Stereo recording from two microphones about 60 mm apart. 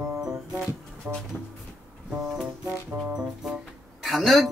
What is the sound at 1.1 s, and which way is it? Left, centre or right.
Speech, right.